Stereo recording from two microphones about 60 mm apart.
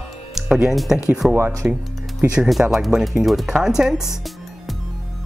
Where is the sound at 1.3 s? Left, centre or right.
Right.